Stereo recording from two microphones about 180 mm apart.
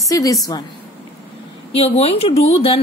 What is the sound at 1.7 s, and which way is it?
A woman's voice, 35° left (ahead or behind).